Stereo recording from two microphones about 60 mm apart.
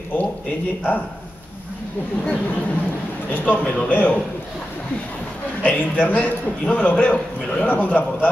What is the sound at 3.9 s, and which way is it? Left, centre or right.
Speech, left.